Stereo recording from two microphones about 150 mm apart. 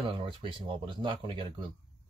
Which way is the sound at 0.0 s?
35° right (ahead or behind).